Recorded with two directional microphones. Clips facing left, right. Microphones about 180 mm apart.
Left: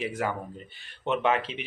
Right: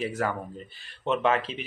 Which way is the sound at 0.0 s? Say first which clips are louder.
Right 1 dB; 15° left (ahead or behind).